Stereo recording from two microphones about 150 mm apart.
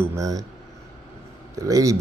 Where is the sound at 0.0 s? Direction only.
20° right (ahead or behind).